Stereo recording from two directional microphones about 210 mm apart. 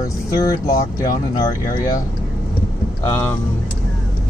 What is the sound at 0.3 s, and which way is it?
Speech, 15° left (ahead or behind).